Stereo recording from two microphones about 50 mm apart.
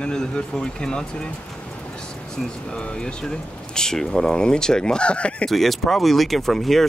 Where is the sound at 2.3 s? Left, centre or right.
Centre.